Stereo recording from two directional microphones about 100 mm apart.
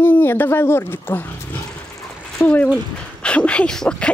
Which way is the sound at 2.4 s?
25° left (ahead or behind).